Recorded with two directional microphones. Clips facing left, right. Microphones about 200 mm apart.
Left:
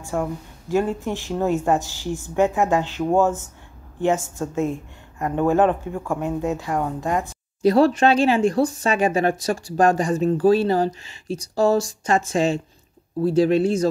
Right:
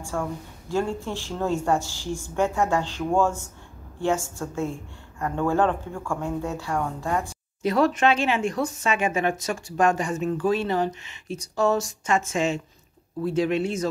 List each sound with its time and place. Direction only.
0.1 s a woman's voice: 15° left (ahead or behind)
4.4 s speech: 20° left (ahead or behind)
7.6 s speech: 30° left (ahead or behind)